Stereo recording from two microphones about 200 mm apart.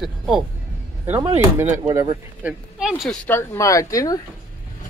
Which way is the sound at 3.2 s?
15° left (ahead or behind).